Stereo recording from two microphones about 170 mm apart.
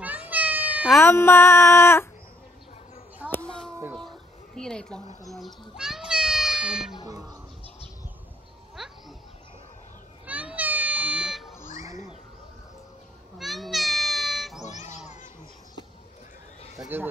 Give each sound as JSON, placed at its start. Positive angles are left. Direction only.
{"t": 0.0, "sound": "meow", "side_deg": -10}
{"t": 1.0, "sound": "music", "side_deg": 15}
{"t": 3.3, "sound": "a sound", "side_deg": 10}
{"t": 4.6, "sound": "a child's voice", "side_deg": 5}
{"t": 7.1, "sound": "music", "side_deg": -20}
{"t": 8.8, "sound": "a sound", "side_deg": -5}
{"t": 10.2, "sound": "children playing", "side_deg": -10}
{"t": 11.6, "sound": "children playing", "side_deg": 45}
{"t": 13.4, "sound": "cat", "side_deg": 0}
{"t": 14.6, "sound": "a sound", "side_deg": 45}
{"t": 16.7, "sound": "speech", "side_deg": -15}